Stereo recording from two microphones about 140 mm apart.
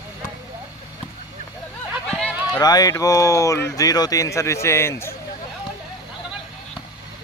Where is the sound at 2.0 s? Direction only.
5° left (ahead or behind).